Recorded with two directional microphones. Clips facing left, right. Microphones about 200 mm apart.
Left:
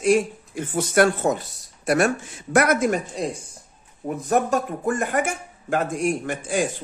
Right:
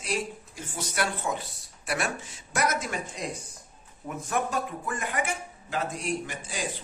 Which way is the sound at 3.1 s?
30° left (ahead or behind).